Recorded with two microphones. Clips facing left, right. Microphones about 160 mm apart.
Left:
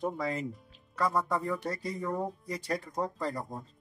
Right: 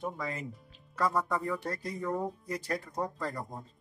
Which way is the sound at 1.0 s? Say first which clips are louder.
Left 1 dB; centre (ahead or behind).